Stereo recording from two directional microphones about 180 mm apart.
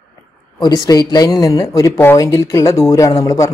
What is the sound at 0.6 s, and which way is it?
Speech, 20° left (ahead or behind).